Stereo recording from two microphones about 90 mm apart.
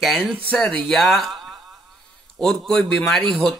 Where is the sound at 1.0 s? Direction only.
Centre (ahead or behind).